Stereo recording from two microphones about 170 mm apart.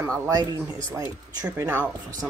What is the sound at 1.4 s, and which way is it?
Speech, 10° right (ahead or behind).